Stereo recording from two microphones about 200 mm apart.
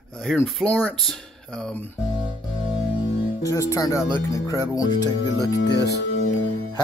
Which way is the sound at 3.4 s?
15° left (ahead or behind).